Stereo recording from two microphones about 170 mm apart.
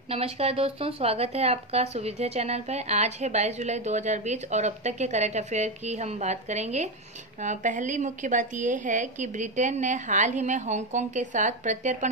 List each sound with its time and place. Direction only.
0.1 s a woman's voice: 35° right (ahead or behind)